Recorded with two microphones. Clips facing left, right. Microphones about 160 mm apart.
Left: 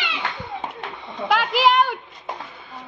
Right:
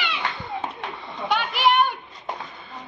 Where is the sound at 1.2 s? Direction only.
90° left.